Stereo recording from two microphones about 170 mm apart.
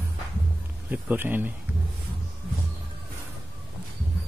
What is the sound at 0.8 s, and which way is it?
Speech, 10° right (ahead or behind).